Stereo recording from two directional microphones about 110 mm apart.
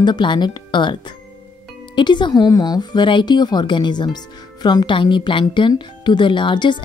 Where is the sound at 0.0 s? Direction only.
45° left (ahead or behind).